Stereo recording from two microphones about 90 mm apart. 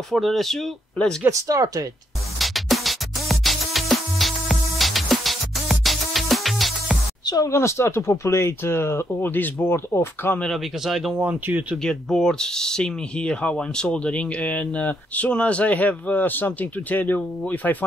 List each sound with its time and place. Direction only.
0.1 s speech: centre (ahead or behind)
1.3 s speech: 40° right (ahead or behind)
2.3 s music: centre (ahead or behind)
7.2 s speech: 45° left (ahead or behind)
7.5 s speech: 30° left (ahead or behind)
10.4 s speech: centre (ahead or behind)
11.1 s speech: 20° right (ahead or behind)
11.8 s speech: 5° left (ahead or behind)